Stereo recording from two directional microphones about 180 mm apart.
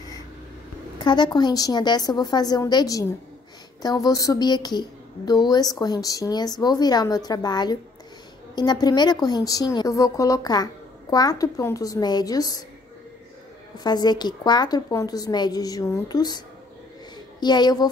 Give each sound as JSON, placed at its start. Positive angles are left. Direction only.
{"t": 0.9, "sound": "a woman's voice", "side_deg": 25}
{"t": 13.7, "sound": "a woman's voice", "side_deg": 20}